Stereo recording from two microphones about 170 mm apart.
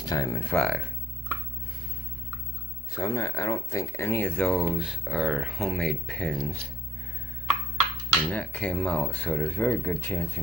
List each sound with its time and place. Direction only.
0.0 s speech: 20° left (ahead or behind)
0.5 s speech: centre (ahead or behind)
3.0 s speech: 20° left (ahead or behind)
8.3 s speech: 10° left (ahead or behind)